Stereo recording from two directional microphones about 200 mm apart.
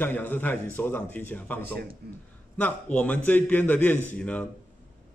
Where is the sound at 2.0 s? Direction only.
50° right (ahead or behind).